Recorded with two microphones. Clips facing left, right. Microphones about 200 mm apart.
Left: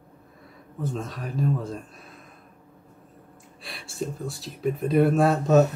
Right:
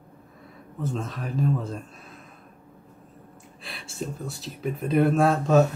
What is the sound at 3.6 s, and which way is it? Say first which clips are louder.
Speech: left 2 dB; centre (ahead or behind).